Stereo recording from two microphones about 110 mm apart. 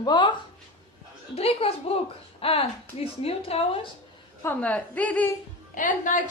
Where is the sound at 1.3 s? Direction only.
65° left (ahead or behind).